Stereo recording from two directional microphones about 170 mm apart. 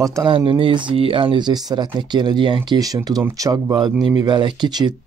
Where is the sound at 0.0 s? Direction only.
20° right (ahead or behind).